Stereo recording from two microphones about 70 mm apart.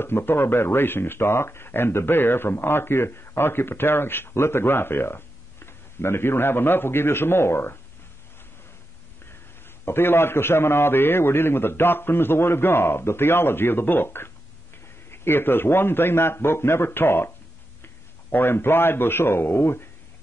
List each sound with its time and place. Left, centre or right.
0.0 s speech: left
9.8 s a man's voice: left